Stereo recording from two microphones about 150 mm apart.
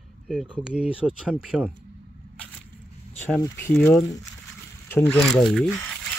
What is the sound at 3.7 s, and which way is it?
Speech, 5° left (ahead or behind).